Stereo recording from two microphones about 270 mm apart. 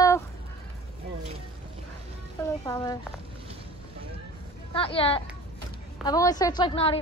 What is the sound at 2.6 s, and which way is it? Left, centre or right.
Speech, centre.